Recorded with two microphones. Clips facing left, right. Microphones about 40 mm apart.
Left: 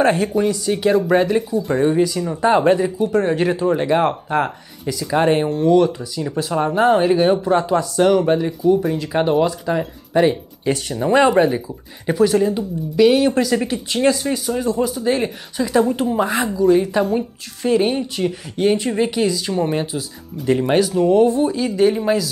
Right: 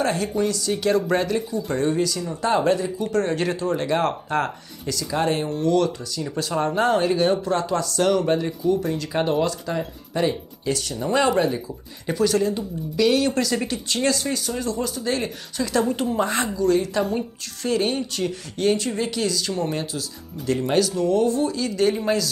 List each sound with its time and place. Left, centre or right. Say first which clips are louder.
0.0 s speech: left 6 dB; left
1.5 s speech: left 6 dB; centre
1.8 s speech: left 5 dB; centre
5.5 s speech: left 6 dB; centre